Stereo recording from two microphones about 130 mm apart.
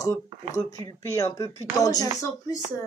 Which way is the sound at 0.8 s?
25° left (ahead or behind).